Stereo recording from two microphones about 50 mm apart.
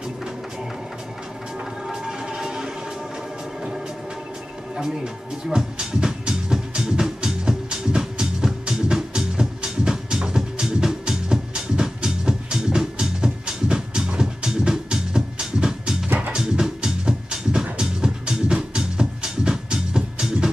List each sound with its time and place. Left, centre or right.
1.9 s music: centre
4.7 s music: centre
16.1 s music: right
16.3 s music: centre